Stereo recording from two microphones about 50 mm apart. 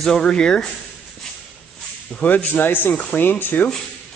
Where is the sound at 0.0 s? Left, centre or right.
Centre.